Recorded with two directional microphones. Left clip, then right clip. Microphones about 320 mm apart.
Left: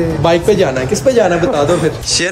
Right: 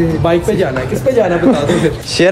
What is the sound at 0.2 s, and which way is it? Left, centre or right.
Speech, left.